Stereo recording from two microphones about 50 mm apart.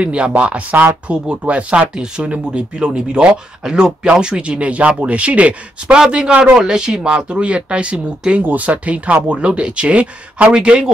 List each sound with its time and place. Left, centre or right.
0.0 s speech: right